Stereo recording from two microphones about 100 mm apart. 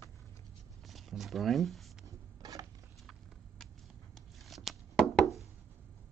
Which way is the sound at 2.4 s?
40° right (ahead or behind).